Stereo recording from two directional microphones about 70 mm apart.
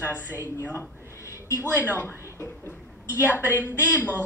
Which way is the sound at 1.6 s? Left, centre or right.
Right.